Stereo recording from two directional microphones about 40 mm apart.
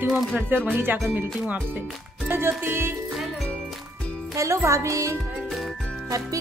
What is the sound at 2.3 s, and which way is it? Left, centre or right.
Music, right.